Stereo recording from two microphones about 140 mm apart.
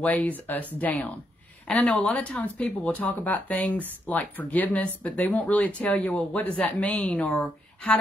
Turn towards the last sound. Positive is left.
turn(degrees=10)  # may be behind; listen again after turning